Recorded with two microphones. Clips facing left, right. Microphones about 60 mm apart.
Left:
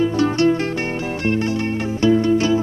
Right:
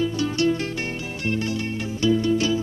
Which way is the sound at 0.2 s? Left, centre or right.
Left.